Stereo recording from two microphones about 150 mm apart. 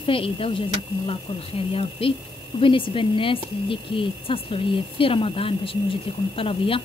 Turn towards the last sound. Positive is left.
turn(degrees=35)  # may be behind; listen again after turning